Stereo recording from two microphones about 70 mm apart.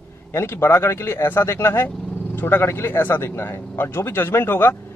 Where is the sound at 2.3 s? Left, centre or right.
Left.